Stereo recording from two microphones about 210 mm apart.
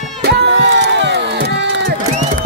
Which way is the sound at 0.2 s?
50° right (ahead or behind).